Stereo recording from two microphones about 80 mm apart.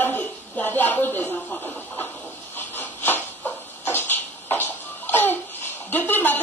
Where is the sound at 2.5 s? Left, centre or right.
Left.